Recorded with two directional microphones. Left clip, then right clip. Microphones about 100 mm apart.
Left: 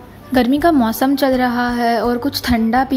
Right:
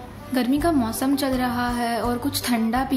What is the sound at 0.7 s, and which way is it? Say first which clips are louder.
A woman's voice: left 8 dB; 90° left.